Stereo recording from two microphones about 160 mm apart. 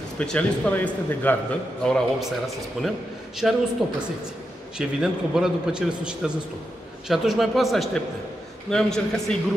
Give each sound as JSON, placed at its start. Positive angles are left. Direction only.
{"t": 0.2, "sound": "a man's voice", "side_deg": 5}
{"t": 4.7, "sound": "a man's voice", "side_deg": -5}